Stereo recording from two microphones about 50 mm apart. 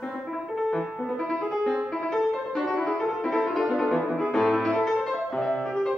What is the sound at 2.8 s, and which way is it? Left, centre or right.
Music, centre.